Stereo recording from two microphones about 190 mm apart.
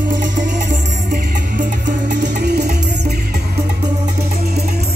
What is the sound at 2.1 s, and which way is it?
Music, 60° right (ahead or behind).